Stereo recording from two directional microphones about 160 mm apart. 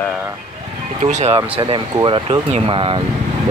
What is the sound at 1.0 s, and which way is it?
Speech, 45° right (ahead or behind).